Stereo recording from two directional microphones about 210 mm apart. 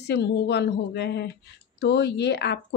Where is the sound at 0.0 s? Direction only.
55° left (ahead or behind).